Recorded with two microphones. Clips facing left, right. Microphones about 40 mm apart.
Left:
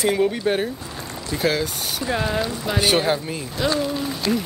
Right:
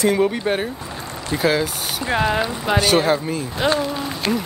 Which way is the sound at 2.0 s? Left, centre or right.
Right.